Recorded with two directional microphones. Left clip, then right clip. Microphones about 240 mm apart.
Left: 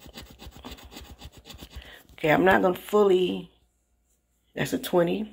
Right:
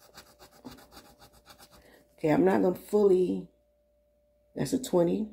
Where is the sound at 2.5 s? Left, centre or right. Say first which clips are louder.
Left 5 dB; left.